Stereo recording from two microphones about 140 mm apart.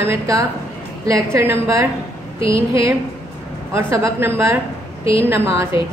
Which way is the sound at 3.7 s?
20° right (ahead or behind).